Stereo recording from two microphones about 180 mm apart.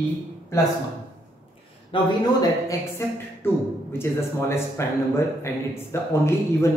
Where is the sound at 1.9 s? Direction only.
20° left (ahead or behind).